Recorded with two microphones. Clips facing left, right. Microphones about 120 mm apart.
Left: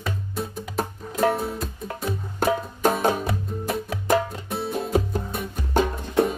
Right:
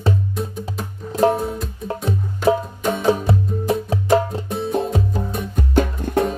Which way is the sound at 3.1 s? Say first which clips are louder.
Right 6 dB; 30° right (ahead or behind).